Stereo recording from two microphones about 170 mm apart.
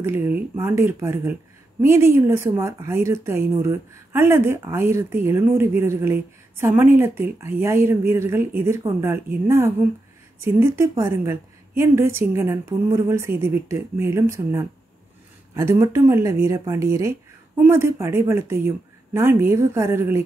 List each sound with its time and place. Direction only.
0.0 s a woman's voice: 10° right (ahead or behind)